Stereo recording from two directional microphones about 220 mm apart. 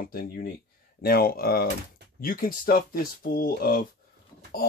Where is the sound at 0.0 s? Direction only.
40° left (ahead or behind).